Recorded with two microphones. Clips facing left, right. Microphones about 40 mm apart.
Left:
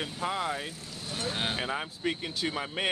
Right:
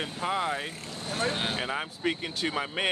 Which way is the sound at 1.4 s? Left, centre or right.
Centre.